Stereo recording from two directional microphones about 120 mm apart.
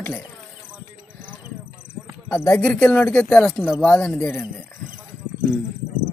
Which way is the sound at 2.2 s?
20° left (ahead or behind).